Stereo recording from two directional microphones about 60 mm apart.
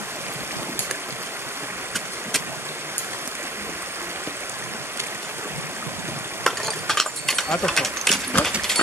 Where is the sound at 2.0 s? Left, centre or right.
Right.